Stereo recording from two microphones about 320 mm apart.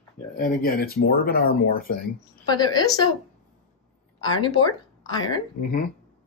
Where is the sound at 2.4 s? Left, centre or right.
Centre.